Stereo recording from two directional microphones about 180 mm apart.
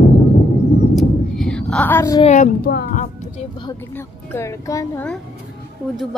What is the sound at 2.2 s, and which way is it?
Speech, 40° left (ahead or behind).